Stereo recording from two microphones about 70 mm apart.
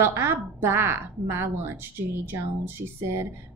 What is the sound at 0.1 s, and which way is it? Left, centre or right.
A woman's voice, right.